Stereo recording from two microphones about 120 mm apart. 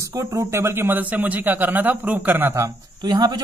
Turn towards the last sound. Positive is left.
turn(degrees=-35)  # may be behind; listen again after turning